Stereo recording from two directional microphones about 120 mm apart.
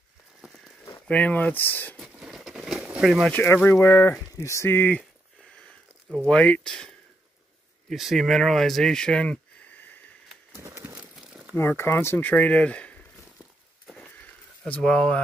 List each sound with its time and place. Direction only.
0.4 s a sound: 10° right (ahead or behind)
1.0 s speech: 10° left (ahead or behind)
2.0 s a sound: centre (ahead or behind)
3.3 s speech: 15° left (ahead or behind)
6.2 s speech: 10° left (ahead or behind)
7.9 s speech: centre (ahead or behind); by 9.9 s 15° left (ahead or behind)
10.5 s a sound: 20° right (ahead or behind)
11.0 s crumpling: 5° right (ahead or behind)
11.5 s speech: 20° left (ahead or behind)
14.6 s speech: 5° left (ahead or behind)